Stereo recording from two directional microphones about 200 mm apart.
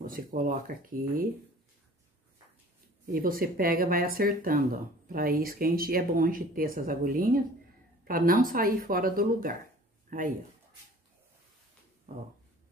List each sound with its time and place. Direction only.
0.0 s speech: 45° right (ahead or behind)
3.1 s a man's voice: 45° right (ahead or behind)